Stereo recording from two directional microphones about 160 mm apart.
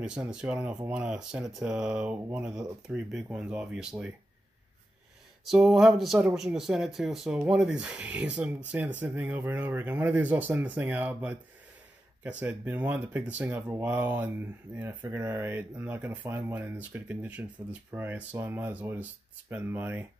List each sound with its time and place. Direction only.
0.0 s speech: 5° right (ahead or behind)
5.4 s speech: centre (ahead or behind)